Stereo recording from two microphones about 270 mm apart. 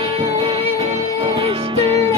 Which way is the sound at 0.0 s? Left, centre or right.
Centre.